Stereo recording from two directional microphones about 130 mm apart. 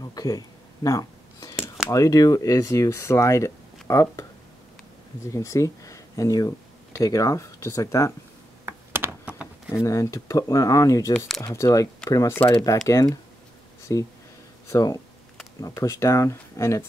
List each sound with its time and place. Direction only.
0.0 s a sound: 30° left (ahead or behind)
1.9 s speech: 25° left (ahead or behind)
5.3 s speech: 25° left (ahead or behind)
8.6 s a sound: 20° right (ahead or behind)
9.7 s speech: 20° left (ahead or behind)
11.1 s speech: centre (ahead or behind)
11.4 s speech: 25° left (ahead or behind)